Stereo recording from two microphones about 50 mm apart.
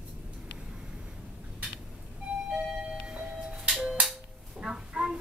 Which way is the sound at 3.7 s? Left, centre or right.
Centre.